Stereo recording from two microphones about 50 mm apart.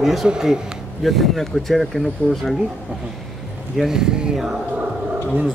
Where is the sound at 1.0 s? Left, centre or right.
Centre.